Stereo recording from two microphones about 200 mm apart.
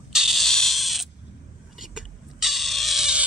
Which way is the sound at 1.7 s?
Centre (ahead or behind).